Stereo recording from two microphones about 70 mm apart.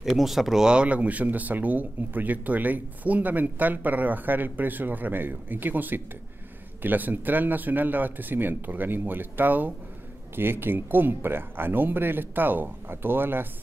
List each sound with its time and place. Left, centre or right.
0.0 s speech: centre; by 13.5 s right